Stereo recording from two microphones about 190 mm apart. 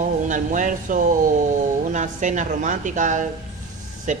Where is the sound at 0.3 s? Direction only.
40° right (ahead or behind).